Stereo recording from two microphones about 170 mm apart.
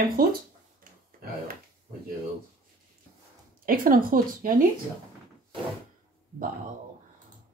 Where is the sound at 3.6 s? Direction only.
55° right (ahead or behind).